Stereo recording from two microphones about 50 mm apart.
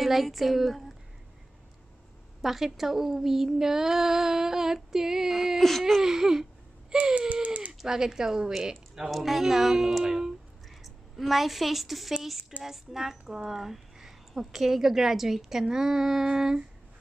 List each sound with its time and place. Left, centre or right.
0.0 s a woman's voice: centre
2.4 s speech: centre
5.6 s speech: centre
6.0 s speech: centre
6.9 s baby cry: centre
7.4 s a sound: right
7.8 s a woman's voice: centre